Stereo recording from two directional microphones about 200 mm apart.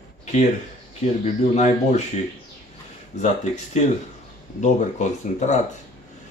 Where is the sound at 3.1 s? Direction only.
35° left (ahead or behind).